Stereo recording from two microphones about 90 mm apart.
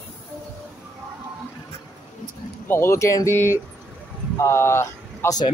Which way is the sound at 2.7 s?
30° left (ahead or behind).